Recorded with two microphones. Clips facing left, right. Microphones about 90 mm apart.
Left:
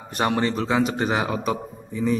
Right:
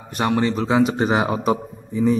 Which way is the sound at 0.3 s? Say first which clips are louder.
Right 5 dB; 15° right (ahead or behind).